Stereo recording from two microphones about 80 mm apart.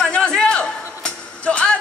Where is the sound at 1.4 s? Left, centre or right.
Centre.